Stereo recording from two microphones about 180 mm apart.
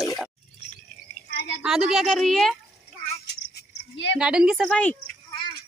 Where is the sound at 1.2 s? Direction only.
65° left (ahead or behind).